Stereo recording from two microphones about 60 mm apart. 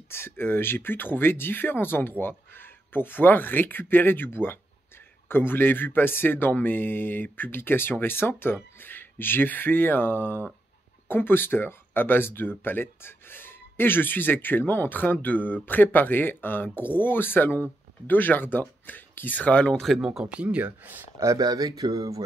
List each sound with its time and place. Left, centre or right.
0.1 s speech: left
20.0 s speech: centre; by 21.0 s right
21.2 s speech: right